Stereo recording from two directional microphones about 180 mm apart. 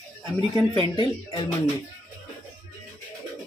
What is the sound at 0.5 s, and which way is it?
A man's voice, 25° left (ahead or behind).